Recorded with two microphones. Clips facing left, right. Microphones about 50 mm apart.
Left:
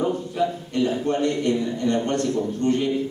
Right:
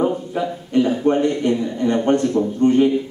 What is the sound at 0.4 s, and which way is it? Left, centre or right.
A man's voice, right.